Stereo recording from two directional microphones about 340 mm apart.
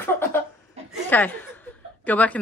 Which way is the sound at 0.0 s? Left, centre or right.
Centre.